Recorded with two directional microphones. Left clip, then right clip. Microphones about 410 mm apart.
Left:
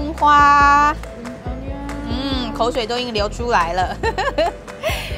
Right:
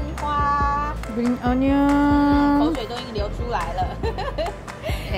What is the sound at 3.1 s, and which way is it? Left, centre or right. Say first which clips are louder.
Music: left 8 dB; left.